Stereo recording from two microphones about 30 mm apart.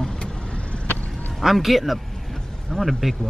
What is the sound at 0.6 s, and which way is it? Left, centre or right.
Vehicle, left.